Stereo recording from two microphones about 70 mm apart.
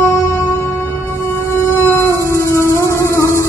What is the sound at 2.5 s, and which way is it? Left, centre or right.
Music, left.